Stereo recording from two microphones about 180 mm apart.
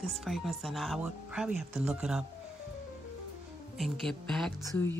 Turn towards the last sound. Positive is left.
turn(degrees=15)  # may be behind; listen again after turning